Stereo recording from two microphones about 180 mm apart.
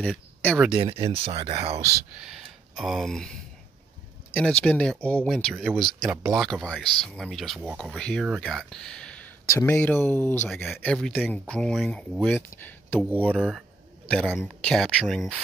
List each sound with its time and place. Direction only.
0.0 s a sound: 5° left (ahead or behind)
0.7 s speech: 35° right (ahead or behind)
2.1 s speech: 5° right (ahead or behind)
10.5 s speech: centre (ahead or behind)
13.3 s speech: 5° right (ahead or behind)